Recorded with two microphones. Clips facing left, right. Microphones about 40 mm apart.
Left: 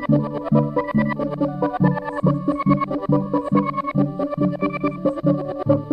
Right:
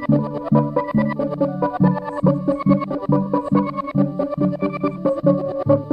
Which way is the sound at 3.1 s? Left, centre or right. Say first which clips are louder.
Right 2 dB; centre.